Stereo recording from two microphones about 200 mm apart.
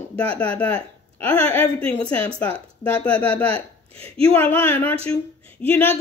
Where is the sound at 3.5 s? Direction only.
30° right (ahead or behind).